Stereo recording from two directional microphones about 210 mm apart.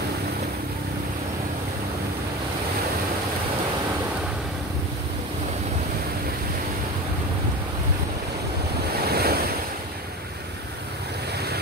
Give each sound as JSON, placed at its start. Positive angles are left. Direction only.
{"t": 9.0, "sound": "waves", "side_deg": -50}